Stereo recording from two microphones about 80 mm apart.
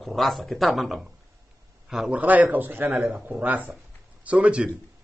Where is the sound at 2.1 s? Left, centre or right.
Centre.